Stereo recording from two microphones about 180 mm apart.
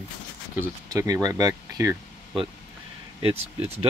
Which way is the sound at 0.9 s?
20° right (ahead or behind).